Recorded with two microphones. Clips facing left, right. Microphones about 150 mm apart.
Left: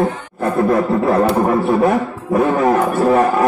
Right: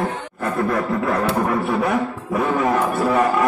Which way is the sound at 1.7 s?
45° left (ahead or behind).